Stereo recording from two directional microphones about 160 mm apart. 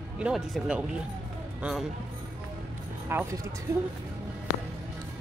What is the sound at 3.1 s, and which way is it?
Speech, 15° right (ahead or behind).